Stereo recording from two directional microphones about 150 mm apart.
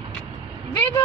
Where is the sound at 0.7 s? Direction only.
20° left (ahead or behind).